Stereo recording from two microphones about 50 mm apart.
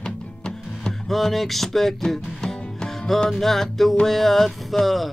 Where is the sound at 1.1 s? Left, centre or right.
Centre.